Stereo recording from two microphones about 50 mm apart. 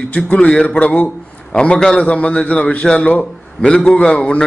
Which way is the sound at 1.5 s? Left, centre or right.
Centre.